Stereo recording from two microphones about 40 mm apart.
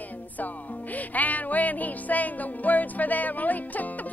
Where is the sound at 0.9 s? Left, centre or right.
Left.